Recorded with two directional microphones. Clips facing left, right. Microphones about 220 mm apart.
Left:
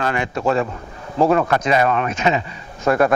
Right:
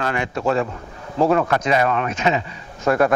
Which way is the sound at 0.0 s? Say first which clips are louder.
Left 2 dB; 15° left (ahead or behind).